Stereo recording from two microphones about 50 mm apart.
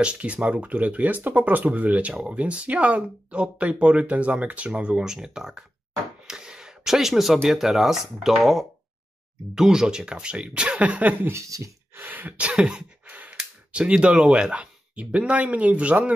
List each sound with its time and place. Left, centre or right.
0.0 s speech: right
5.0 s speech: centre
6.2 s a sound: centre
7.4 s speech: centre; by 11.1 s right
11.3 s speech: right
12.1 s speech: right; by 12.8 s centre
13.0 s a sound: right
13.7 s speech: right